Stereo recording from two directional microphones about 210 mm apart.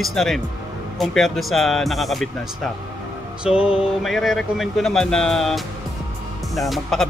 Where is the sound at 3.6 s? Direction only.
25° left (ahead or behind).